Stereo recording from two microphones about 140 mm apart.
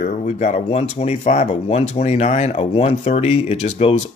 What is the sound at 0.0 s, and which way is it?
Speech, 60° left (ahead or behind).